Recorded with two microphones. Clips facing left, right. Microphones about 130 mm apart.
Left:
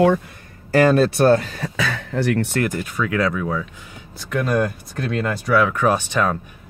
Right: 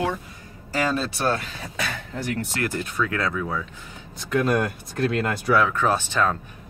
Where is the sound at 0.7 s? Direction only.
60° left (ahead or behind); by 1.6 s 45° left (ahead or behind).